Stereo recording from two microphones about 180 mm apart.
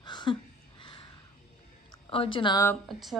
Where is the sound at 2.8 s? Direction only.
Centre (ahead or behind).